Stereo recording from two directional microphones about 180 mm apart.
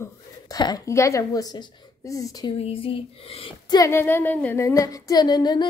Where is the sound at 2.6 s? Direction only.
30° left (ahead or behind).